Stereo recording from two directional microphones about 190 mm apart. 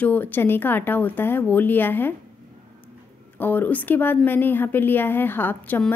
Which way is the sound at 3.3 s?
10° left (ahead or behind).